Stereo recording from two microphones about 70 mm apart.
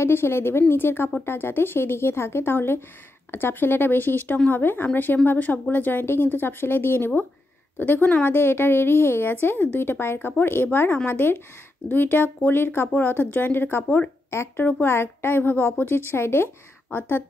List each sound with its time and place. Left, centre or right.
0.0 s a woman's voice: left